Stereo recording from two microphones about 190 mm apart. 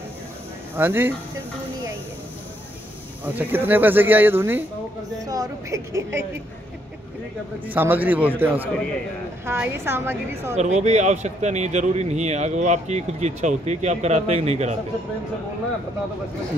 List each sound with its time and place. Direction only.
0.7 s speech: 10° right (ahead or behind)
3.3 s speech: 10° right (ahead or behind)
7.7 s speech: 10° right (ahead or behind)
10.5 s speech: 35° right (ahead or behind)